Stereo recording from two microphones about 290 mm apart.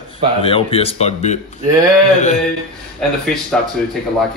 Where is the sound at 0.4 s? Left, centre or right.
Centre.